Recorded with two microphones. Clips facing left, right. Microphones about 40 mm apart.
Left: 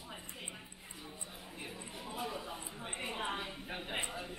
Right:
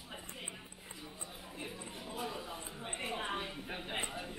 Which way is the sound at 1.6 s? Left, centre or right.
Centre.